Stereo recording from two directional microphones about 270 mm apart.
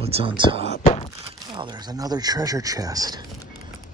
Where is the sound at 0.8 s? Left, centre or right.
Left.